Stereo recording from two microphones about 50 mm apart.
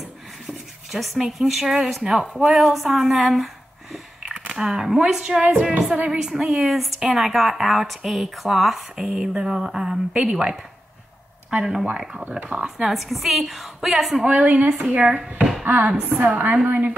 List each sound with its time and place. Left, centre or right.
0.9 s speech: centre
4.3 s speech: centre
5.4 s speech: right
5.7 s a woman's voice: centre
11.5 s speech: centre
14.2 s speech: right
15.6 s a sound: right
15.9 s speech: centre
16.2 s a woman's voice: right